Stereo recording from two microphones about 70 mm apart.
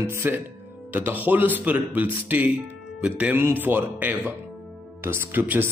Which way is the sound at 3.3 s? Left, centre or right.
Right.